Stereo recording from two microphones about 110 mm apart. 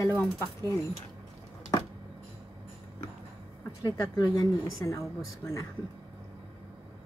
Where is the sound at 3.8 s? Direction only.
30° left (ahead or behind).